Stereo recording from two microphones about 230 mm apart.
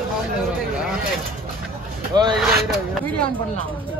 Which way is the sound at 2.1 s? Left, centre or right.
Centre.